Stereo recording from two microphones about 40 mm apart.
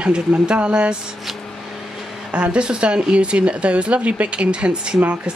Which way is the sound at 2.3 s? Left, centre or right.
Right.